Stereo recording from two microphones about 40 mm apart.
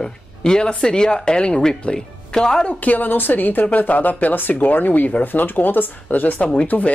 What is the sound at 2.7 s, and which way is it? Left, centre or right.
Speech, left.